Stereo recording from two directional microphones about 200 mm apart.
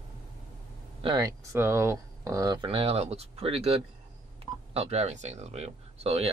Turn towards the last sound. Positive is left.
turn(degrees=-30)  # may be behind; listen again after turning